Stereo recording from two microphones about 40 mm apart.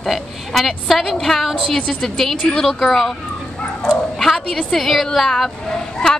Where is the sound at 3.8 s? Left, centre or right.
Centre.